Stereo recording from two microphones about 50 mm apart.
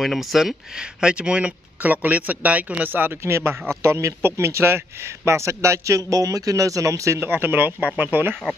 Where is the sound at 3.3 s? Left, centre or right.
Right.